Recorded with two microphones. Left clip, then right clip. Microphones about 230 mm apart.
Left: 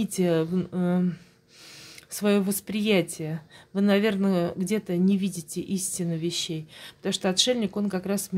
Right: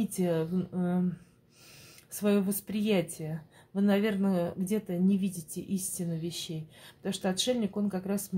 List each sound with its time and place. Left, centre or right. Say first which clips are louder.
0.0 s speech: left 6 dB; left
2.1 s speech: left 4 dB; left